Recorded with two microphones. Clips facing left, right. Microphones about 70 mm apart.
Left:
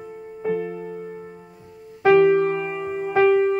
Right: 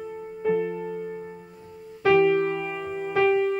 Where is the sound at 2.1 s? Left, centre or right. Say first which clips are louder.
Left 4 dB; left.